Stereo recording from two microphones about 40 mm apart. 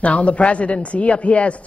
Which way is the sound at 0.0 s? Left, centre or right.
Left.